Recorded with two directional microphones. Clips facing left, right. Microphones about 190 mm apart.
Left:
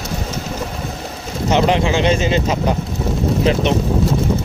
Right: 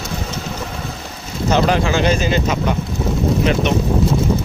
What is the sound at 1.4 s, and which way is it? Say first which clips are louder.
Speech: left 1 dB; 20° left (ahead or behind).